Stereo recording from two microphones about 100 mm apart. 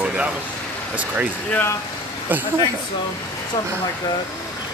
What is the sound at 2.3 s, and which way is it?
Speech, 20° right (ahead or behind).